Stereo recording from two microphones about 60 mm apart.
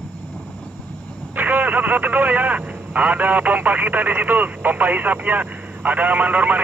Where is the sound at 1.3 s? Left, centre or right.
Right.